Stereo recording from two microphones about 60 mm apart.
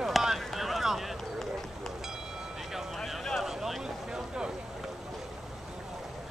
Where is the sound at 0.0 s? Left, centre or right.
Centre.